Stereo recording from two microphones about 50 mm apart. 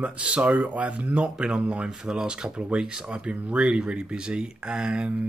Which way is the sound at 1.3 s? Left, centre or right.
Centre.